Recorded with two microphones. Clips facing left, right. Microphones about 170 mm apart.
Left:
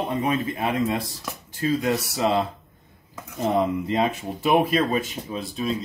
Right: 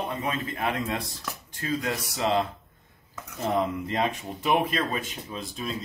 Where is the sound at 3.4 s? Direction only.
Centre (ahead or behind).